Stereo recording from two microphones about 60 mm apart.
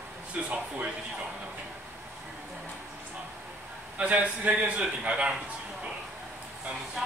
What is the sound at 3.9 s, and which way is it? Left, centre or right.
A man's voice, right.